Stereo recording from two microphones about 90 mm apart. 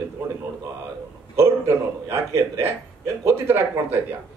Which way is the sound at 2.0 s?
30° right (ahead or behind).